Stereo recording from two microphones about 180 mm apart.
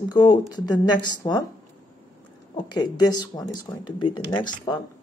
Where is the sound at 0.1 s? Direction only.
25° left (ahead or behind).